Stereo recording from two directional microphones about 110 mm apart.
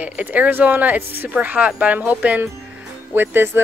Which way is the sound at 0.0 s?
15° right (ahead or behind).